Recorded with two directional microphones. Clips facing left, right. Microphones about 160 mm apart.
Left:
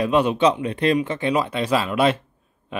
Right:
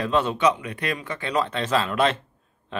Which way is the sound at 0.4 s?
30° left (ahead or behind).